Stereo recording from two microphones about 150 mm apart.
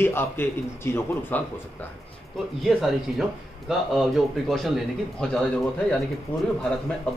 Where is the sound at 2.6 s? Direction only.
Centre (ahead or behind).